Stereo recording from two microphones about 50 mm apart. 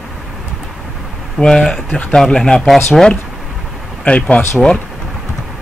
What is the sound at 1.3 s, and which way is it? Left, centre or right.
Speech, centre.